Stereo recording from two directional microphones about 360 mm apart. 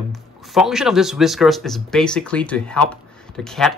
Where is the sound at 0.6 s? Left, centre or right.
Centre.